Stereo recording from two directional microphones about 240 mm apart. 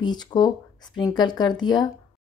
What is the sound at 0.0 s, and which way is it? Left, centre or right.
Speech, centre.